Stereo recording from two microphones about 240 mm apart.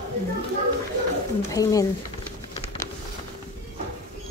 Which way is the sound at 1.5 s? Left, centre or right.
Centre.